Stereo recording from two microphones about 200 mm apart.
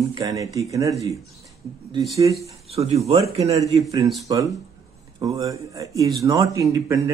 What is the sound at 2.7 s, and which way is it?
Speech, 30° right (ahead or behind).